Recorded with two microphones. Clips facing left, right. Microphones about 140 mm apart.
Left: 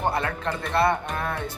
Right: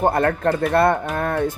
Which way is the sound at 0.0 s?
50° right (ahead or behind).